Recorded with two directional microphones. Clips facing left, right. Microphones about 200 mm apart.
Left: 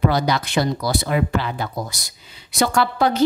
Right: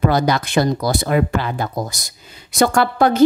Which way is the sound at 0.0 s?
50° right (ahead or behind).